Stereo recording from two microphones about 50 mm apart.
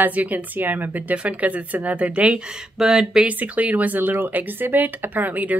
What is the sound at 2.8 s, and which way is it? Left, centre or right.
Speech, centre.